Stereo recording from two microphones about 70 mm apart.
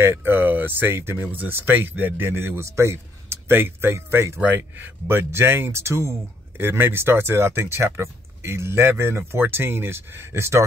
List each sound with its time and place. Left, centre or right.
0.0 s speech: right
4.4 s speech: right